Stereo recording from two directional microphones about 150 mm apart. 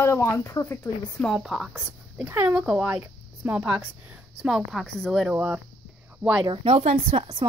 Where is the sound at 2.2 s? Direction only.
15° right (ahead or behind).